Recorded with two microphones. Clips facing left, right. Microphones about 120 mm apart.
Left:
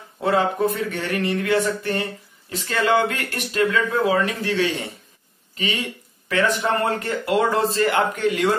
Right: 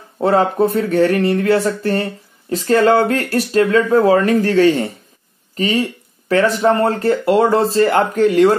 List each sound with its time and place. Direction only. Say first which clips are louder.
0.2 s speech: right 6 dB; 35° right (ahead or behind)